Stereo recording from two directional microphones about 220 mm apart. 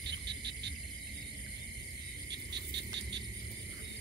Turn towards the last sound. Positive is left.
turn(degrees=-50)  # may be behind; listen again after turning